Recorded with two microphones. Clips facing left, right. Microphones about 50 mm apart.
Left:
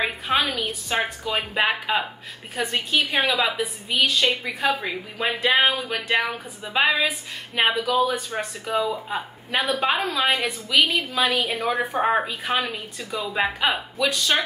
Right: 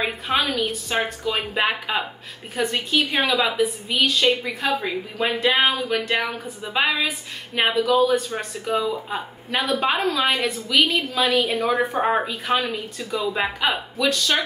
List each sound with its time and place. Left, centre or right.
0.0 s a woman's voice: centre
10.4 s a woman's voice: centre
11.3 s a woman's voice: centre
12.5 s a woman's voice: left
13.3 s a woman's voice: centre